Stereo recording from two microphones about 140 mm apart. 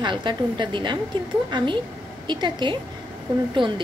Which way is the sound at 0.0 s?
35° right (ahead or behind).